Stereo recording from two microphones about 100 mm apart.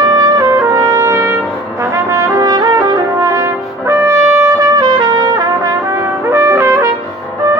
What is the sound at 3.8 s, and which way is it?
Brass instrument, 30° right (ahead or behind).